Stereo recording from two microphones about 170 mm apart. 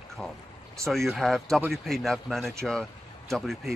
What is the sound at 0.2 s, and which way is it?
Speech, 5° left (ahead or behind).